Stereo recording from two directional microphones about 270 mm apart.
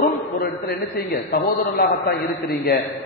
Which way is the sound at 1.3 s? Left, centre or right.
Left.